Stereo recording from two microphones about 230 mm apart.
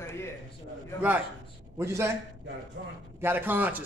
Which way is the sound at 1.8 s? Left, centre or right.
Centre.